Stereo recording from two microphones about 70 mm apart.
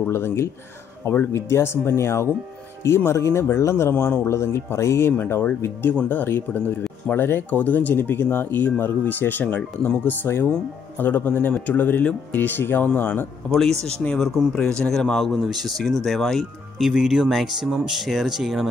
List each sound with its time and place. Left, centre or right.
0.0 s speech: left
13.6 s speech: centre